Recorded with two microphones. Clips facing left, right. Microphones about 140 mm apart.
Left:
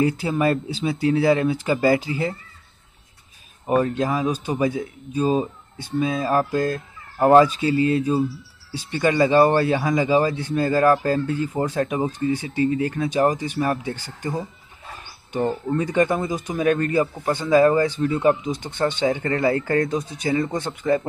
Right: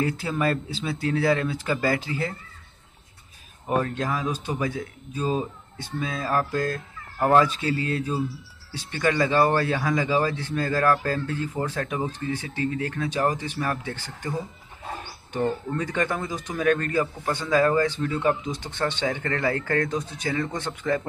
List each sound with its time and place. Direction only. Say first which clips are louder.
0.0 s speech: left 5 dB; 10° left (ahead or behind)
3.6 s speech: left 5 dB; 15° left (ahead or behind)
15.7 s speech: left 6 dB; 15° left (ahead or behind)